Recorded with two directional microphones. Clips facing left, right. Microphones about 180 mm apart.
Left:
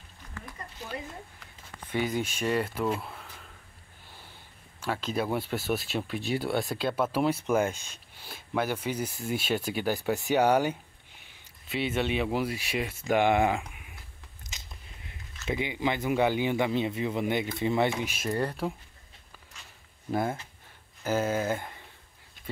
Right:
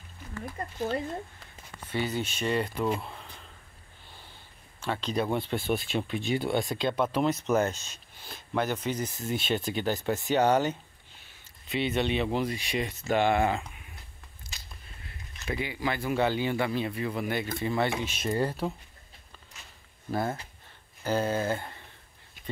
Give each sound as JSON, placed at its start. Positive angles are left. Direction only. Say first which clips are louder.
{"t": 1.9, "sound": "speech", "louder": "left 1 dB", "side_deg": 10}
{"t": 4.8, "sound": "speech", "louder": "right 1 dB", "side_deg": 5}
{"t": 14.5, "sound": "biting", "louder": "even", "side_deg": 20}
{"t": 15.4, "sound": "speech", "louder": "left 2 dB", "side_deg": 20}
{"t": 18.1, "sound": "speech", "louder": "right 1 dB", "side_deg": 0}
{"t": 20.1, "sound": "speech", "louder": "left 1 dB", "side_deg": 15}